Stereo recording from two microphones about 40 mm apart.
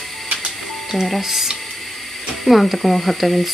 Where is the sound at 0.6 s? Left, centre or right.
Centre.